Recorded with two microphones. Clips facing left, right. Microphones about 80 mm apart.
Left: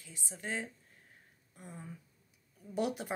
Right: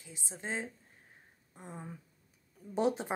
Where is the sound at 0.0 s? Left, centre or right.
Right.